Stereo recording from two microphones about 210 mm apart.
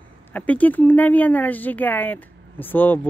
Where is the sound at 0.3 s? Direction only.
5° left (ahead or behind).